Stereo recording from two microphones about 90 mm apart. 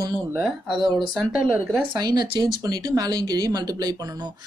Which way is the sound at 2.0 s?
50° right (ahead or behind).